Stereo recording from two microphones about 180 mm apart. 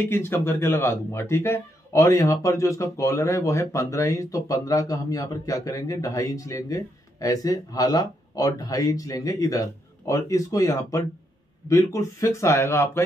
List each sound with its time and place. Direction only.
0.0 s speech: 15° left (ahead or behind)